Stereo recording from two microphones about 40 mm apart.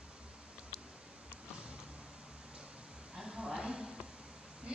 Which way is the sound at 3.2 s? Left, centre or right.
Centre.